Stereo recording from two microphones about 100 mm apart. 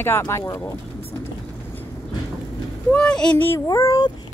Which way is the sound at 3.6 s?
35° left (ahead or behind).